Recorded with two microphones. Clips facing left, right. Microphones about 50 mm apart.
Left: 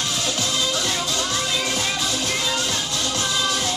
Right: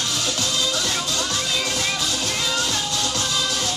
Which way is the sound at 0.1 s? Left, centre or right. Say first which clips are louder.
Even; left.